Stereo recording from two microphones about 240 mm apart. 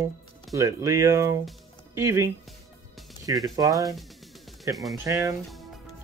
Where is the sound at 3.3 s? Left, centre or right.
Centre.